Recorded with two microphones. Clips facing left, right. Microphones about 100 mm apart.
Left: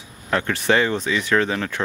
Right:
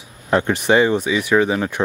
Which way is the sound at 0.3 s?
20° right (ahead or behind).